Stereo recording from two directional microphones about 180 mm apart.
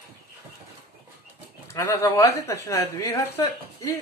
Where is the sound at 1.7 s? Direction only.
15° left (ahead or behind).